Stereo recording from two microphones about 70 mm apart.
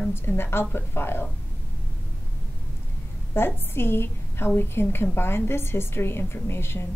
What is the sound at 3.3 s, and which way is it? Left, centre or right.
A woman's voice, left.